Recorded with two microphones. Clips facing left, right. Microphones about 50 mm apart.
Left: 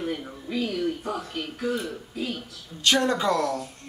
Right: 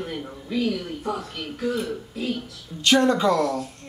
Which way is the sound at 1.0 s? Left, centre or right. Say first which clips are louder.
Right 3 dB; centre.